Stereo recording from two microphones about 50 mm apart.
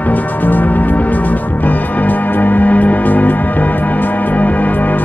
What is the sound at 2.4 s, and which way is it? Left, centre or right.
Music, left.